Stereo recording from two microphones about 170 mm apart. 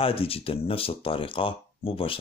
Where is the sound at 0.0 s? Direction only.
35° left (ahead or behind).